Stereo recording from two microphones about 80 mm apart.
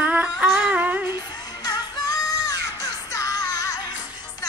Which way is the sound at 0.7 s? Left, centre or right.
Centre.